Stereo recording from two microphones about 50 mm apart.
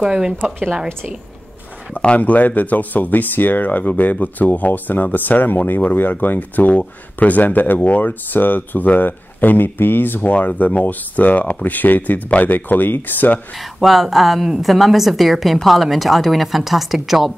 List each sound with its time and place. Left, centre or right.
0.0 s a woman's voice: centre
2.0 s speech: left
10.3 s speech: left
13.7 s a woman's voice: centre